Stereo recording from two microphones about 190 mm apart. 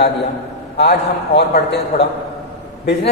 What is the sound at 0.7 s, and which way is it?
A man's voice, 60° left (ahead or behind).